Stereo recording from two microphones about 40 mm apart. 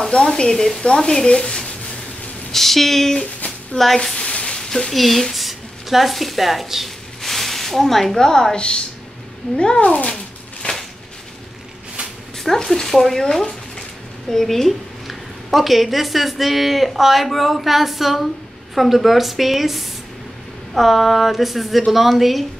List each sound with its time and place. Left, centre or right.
0.0 s stir: centre
2.5 s a woman's voice: centre
3.7 s stir: centre
4.2 s sizzle: left
4.6 s a sound: centre
4.9 s a woman's voice: centre
7.2 s a sound: centre
8.5 s a woman's voice: left
12.4 s stir: centre
14.3 s a woman's voice: centre